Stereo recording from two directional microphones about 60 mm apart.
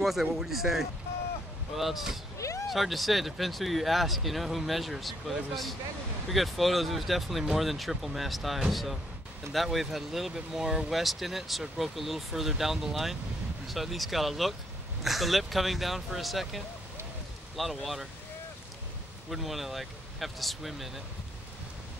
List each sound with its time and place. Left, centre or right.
0.0 s speech: centre
2.3 s a sound: left
2.7 s speech: centre
6.2 s speech: centre
19.3 s speech: centre